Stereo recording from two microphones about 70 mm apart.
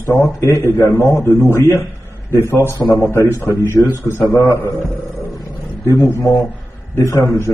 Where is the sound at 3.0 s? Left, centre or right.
Left.